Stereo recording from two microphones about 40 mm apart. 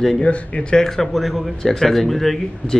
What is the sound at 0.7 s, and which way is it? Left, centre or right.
Speech, centre.